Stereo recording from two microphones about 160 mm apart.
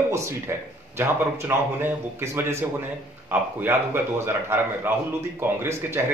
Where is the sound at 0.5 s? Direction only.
15° right (ahead or behind).